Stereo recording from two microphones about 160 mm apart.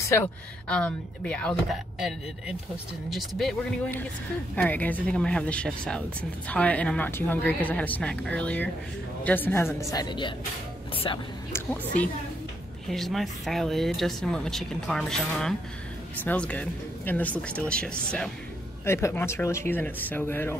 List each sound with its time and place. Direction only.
0.0 s speech: 15° left (ahead or behind)
0.7 s a woman's voice: 5° left (ahead or behind); by 11.2 s 30° left (ahead or behind)
11.5 s speech: 10° left (ahead or behind)
18.9 s speech: 15° left (ahead or behind)